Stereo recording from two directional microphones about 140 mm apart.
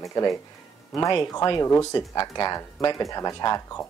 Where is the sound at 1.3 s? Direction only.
25° left (ahead or behind).